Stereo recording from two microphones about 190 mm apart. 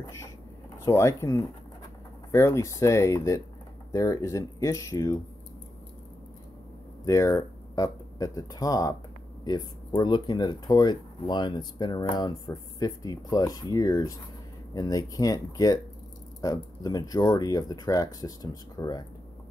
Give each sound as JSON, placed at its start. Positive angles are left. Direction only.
{"t": 0.8, "sound": "speech", "side_deg": 15}
{"t": 7.1, "sound": "speech", "side_deg": 15}